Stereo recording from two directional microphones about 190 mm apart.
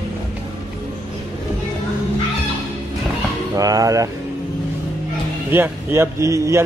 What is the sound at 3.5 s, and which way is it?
Speech, 20° right (ahead or behind).